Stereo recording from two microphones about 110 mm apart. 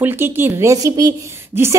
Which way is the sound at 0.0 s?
20° right (ahead or behind).